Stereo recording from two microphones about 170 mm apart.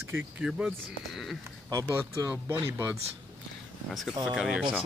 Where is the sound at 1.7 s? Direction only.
20° right (ahead or behind).